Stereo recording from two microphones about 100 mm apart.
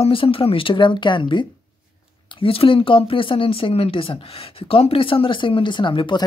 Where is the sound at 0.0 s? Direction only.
65° left (ahead or behind); by 1.4 s 50° left (ahead or behind).